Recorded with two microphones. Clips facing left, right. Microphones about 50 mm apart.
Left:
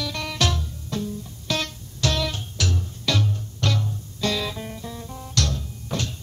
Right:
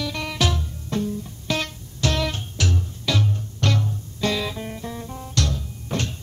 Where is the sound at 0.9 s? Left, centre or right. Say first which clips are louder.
Right 4 dB; right.